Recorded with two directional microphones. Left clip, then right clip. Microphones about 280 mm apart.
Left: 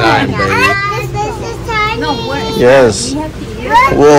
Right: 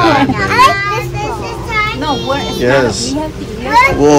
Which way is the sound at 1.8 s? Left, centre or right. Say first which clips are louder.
Left 1 dB; centre.